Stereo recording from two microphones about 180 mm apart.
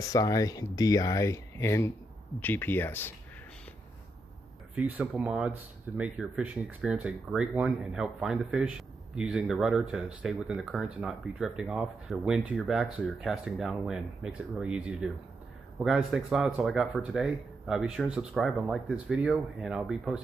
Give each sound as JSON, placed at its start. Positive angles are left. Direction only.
{"t": 0.1, "sound": "speech", "side_deg": 20}
{"t": 4.7, "sound": "speech", "side_deg": -5}